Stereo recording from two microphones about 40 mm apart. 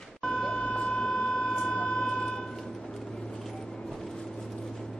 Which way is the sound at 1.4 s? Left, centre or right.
Centre.